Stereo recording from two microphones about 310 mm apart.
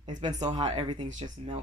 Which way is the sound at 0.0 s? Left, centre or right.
Centre.